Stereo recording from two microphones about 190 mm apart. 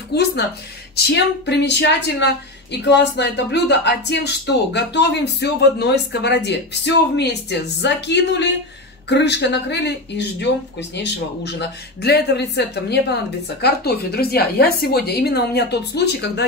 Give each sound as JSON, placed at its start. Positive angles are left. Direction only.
{"t": 0.1, "sound": "speech", "side_deg": 60}